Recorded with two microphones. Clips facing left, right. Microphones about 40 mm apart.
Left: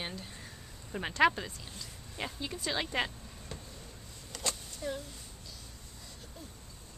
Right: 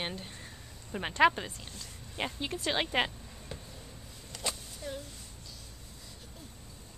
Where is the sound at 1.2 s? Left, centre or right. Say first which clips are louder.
Right 2 dB; centre.